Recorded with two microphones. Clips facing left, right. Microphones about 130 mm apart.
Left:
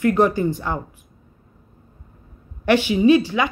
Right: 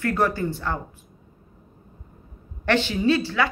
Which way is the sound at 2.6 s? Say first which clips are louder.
Left 6 dB; 10° left (ahead or behind).